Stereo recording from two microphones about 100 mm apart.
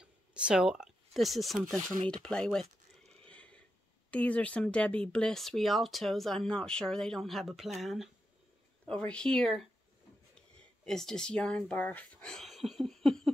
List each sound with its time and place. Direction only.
0.0 s speech: 10° right (ahead or behind); by 2.6 s 5° left (ahead or behind)
3.1 s a sound: 10° left (ahead or behind)
4.1 s speech: 15° left (ahead or behind)
8.8 s speech: 10° left (ahead or behind)
10.9 s speech: 5° left (ahead or behind)